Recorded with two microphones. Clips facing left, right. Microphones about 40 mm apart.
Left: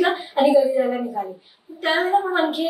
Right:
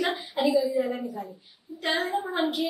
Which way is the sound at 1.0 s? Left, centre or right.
Left.